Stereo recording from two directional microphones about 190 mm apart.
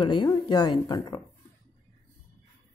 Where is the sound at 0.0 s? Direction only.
25° left (ahead or behind).